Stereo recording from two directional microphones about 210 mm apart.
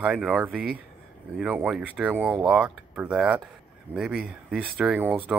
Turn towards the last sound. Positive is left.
turn(degrees=-5)  # may be behind; listen again after turning